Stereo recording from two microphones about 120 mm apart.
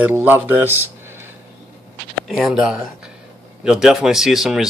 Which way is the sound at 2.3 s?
Centre (ahead or behind).